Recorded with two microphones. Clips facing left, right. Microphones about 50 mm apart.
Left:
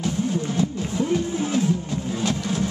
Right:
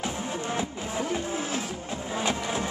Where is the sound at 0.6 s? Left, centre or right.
Right.